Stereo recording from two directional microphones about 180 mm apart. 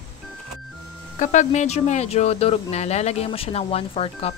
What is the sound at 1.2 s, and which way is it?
Speech, 45° left (ahead or behind).